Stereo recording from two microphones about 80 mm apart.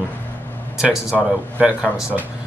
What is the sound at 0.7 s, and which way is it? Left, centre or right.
Speech, centre.